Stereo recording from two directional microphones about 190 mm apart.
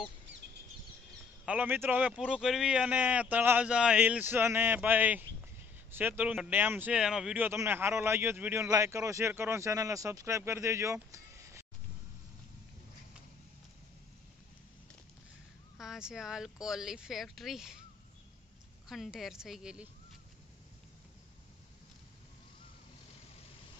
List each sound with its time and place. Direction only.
1.4 s speech: 5° right (ahead or behind)
15.8 s speech: 5° right (ahead or behind)
18.9 s speech: centre (ahead or behind)